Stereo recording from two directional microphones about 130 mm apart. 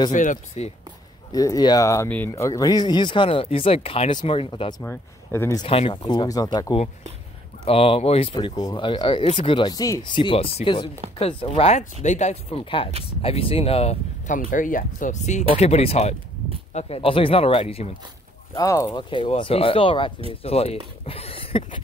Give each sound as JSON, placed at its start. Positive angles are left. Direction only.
{"t": 0.1, "sound": "speech", "side_deg": 75}
{"t": 1.3, "sound": "speech", "side_deg": 30}
{"t": 2.0, "sound": "speech", "side_deg": 10}
{"t": 2.3, "sound": "speech", "side_deg": 25}
{"t": 4.8, "sound": "speech", "side_deg": 20}
{"t": 5.7, "sound": "speech", "side_deg": 45}
{"t": 7.6, "sound": "speech", "side_deg": 50}
{"t": 10.0, "sound": "speech", "side_deg": 40}
{"t": 14.2, "sound": "speech", "side_deg": 85}
{"t": 18.5, "sound": "speech", "side_deg": 25}
{"t": 18.9, "sound": "speech", "side_deg": 40}
{"t": 21.0, "sound": "a sound", "side_deg": 50}